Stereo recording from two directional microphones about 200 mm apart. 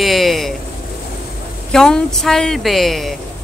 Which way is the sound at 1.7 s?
Centre (ahead or behind).